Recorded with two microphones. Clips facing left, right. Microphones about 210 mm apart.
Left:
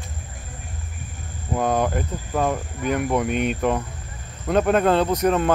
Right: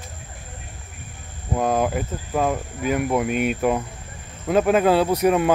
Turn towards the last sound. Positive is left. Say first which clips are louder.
# right 1 dB
turn(degrees=-10)  # may be behind; listen again after turning